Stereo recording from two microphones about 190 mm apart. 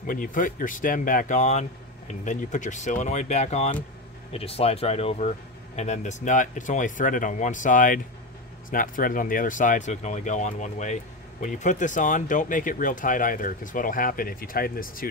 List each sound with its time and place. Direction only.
0.0 s speech: 45° left (ahead or behind)